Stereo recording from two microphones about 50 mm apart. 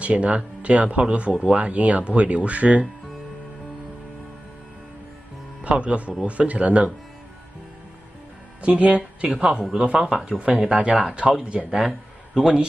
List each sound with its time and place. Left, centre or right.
0.0 s speech: right
5.6 s a man's voice: right
8.6 s speech: right
10.0 s speech: centre
12.4 s speech: centre